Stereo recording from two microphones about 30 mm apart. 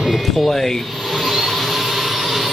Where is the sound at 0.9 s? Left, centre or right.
Centre.